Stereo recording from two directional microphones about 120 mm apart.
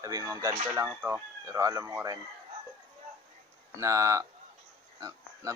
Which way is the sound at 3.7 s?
25° right (ahead or behind).